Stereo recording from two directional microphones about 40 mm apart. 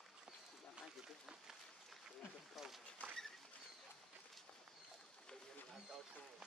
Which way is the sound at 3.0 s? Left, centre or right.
Left.